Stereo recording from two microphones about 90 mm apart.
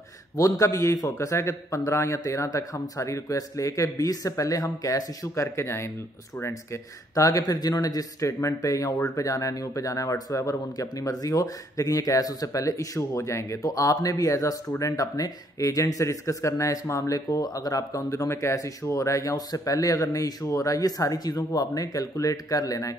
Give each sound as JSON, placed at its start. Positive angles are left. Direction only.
{"t": 0.4, "sound": "a man's voice", "side_deg": 35}